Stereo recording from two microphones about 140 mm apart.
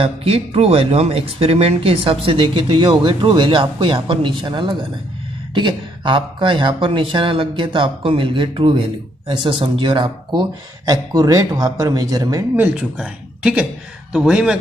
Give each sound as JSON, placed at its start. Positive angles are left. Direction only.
{"t": 0.0, "sound": "speech", "side_deg": -45}
{"t": 12.5, "sound": "speech", "side_deg": -15}
{"t": 12.9, "sound": "a man's voice", "side_deg": -5}